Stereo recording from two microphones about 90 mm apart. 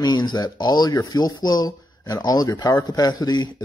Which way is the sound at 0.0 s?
50° left (ahead or behind).